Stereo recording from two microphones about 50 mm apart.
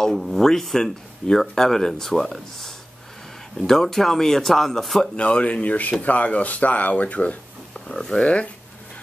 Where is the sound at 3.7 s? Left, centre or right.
Centre.